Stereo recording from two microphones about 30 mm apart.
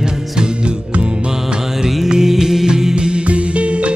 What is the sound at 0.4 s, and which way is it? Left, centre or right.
Music, right.